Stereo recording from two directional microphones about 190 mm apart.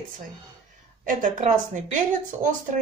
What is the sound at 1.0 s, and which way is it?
A woman's voice, 40° right (ahead or behind).